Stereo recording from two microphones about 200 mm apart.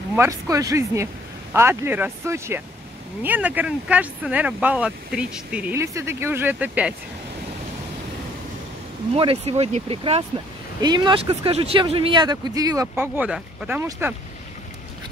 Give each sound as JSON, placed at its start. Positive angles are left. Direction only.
{"t": 0.1, "sound": "speech", "side_deg": -15}
{"t": 9.1, "sound": "speech", "side_deg": -30}